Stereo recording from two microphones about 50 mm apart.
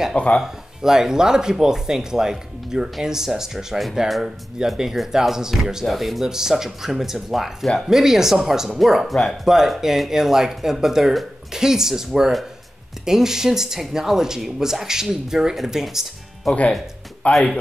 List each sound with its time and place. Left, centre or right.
0.1 s speech: left
0.4 s speech: centre
16.5 s speech: centre
17.2 s speech: left